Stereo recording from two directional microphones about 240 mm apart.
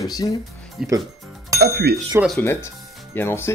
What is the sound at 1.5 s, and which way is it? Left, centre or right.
Speech, right.